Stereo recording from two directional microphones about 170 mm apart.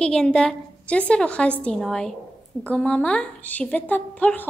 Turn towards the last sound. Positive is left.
turn(degrees=10)  # may be behind; listen again after turning